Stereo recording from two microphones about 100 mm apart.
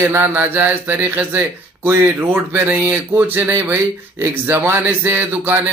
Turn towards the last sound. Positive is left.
turn(degrees=-20)  # may be behind; listen again after turning